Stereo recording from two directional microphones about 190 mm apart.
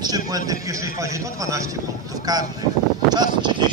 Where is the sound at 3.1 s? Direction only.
25° right (ahead or behind).